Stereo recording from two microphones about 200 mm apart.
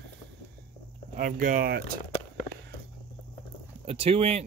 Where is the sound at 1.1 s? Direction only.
40° right (ahead or behind).